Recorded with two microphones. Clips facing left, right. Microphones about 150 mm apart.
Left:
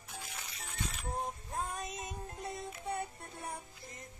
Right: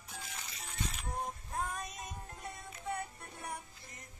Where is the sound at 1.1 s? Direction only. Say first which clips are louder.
Left 2 dB; 25° left (ahead or behind).